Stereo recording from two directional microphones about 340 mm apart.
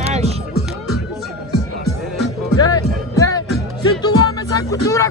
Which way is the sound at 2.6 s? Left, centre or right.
Centre.